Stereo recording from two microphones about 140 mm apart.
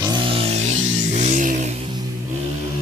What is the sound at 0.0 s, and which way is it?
Music, 35° right (ahead or behind).